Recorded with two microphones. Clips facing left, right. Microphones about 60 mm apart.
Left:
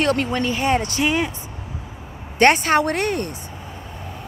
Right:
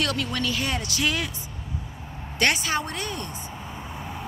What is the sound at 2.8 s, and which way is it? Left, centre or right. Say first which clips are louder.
Speech: left 10 dB; left.